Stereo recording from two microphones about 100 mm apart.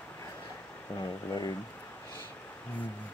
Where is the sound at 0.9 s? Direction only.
40° left (ahead or behind).